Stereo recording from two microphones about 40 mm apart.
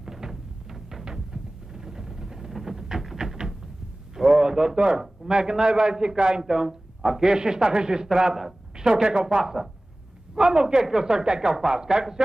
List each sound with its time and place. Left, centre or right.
0.0 s music: centre
1.0 s a sound: centre
4.4 s a man's voice: centre
9.4 s a man's voice: centre